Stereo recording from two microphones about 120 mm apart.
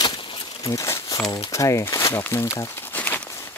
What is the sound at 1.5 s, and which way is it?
Speech, 25° left (ahead or behind).